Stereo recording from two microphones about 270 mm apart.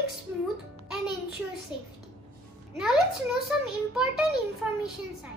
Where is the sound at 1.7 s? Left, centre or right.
Centre.